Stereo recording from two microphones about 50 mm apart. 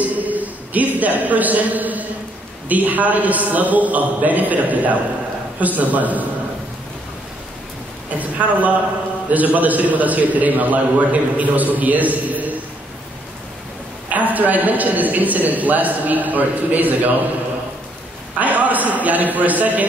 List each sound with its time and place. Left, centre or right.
0.0 s a man's voice: right
8.2 s a man's voice: right
14.0 s a man's voice: right
18.4 s a man's voice: right